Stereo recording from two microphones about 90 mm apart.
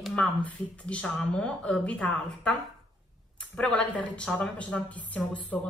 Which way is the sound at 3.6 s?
10° left (ahead or behind).